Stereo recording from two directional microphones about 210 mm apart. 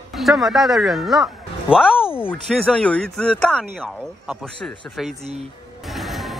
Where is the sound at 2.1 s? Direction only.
5° left (ahead or behind).